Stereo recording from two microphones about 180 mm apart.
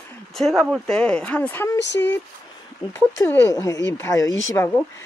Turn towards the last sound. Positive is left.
turn(degrees=15)  # may be behind; listen again after turning